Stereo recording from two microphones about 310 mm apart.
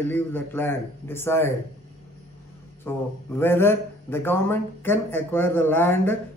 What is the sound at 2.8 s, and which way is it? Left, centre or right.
A man's voice, centre.